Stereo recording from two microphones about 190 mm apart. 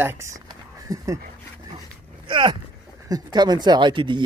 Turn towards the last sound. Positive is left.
turn(degrees=-25)  # may be behind; listen again after turning